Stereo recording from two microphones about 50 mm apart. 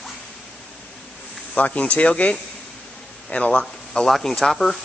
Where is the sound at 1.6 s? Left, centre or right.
Left.